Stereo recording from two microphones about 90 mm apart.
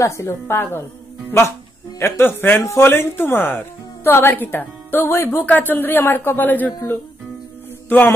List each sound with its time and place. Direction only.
0.0 s speech: 35° left (ahead or behind)
2.0 s speech: 30° left (ahead or behind)
7.9 s speech: 20° left (ahead or behind)